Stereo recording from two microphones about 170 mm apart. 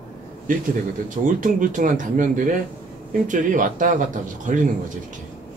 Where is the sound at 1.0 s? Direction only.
50° right (ahead or behind).